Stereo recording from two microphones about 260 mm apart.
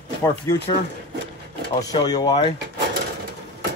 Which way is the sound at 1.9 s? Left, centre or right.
Centre.